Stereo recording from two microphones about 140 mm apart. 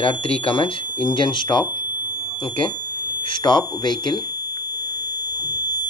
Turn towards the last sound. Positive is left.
turn(degrees=30)  # may be behind; listen again after turning